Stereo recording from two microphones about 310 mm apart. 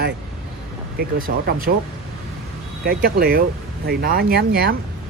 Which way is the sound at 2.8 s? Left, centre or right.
Right.